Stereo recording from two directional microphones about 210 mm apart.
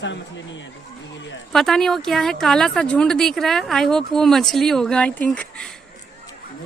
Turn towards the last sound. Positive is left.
turn(degrees=5)  # may be behind; listen again after turning